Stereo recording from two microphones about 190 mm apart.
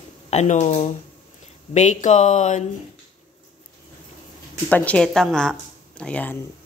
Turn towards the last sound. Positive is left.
turn(degrees=10)  # may be behind; listen again after turning